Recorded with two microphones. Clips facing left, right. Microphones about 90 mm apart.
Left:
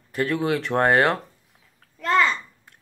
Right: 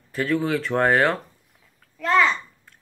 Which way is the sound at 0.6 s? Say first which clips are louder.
Left 2 dB; 20° left (ahead or behind).